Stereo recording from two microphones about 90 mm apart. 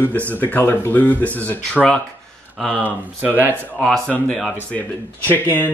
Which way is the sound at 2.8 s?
20° right (ahead or behind).